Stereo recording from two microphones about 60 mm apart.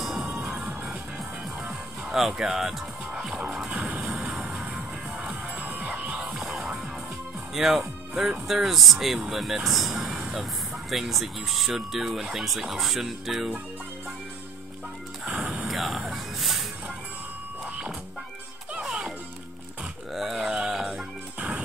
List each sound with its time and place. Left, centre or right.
0.0 s music: centre
0.5 s music: centre
4.1 s music: centre
4.6 s music: centre
5.6 s music: right; by 6.9 s centre
7.5 s speech: centre
15.3 s a sound: centre
17.6 s music: centre